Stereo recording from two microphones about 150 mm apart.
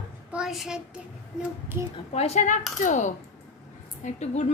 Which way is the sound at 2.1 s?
45° left (ahead or behind).